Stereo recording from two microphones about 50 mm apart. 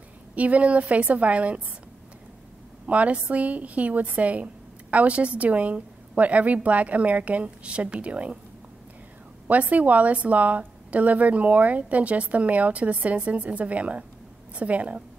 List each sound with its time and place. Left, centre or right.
0.4 s a woman's voice: right
2.9 s a woman's voice: right
9.5 s a woman's voice: right